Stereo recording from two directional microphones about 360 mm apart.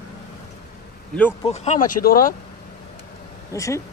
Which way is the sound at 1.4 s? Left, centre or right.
Centre.